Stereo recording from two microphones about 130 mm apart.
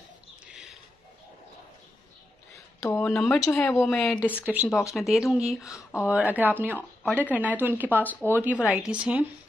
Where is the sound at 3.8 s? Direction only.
5° left (ahead or behind).